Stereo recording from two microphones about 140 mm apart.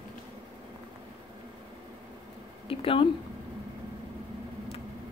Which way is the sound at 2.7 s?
40° left (ahead or behind).